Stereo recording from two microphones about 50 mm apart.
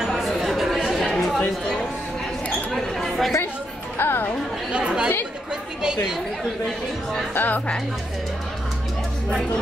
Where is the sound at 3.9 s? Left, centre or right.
Left.